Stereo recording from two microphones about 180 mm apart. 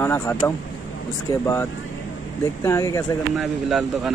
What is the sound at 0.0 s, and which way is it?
Speech, 10° left (ahead or behind).